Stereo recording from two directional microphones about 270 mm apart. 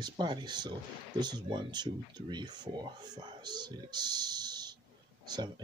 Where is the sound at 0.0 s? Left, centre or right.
Centre.